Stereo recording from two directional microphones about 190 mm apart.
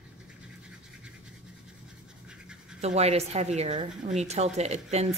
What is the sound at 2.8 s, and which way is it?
A woman's voice, 35° right (ahead or behind).